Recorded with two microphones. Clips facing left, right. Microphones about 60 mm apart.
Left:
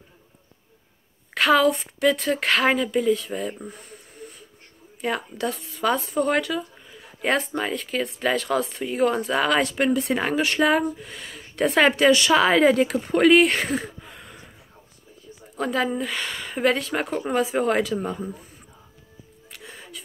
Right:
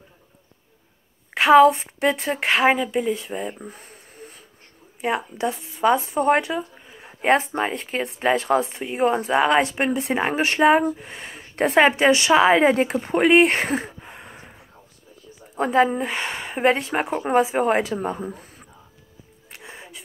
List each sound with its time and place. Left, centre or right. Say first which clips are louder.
1.3 s speech: right 6 dB; right
3.7 s a sound: left 1 dB; right
5.0 s speech: right 2 dB; right
13.1 s a sound: right 1 dB; right
15.5 s speech: right 5 dB; right
19.5 s music: right 1 dB; right